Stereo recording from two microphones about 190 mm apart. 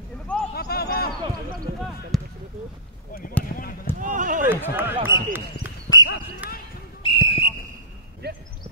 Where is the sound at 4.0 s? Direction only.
40° right (ahead or behind).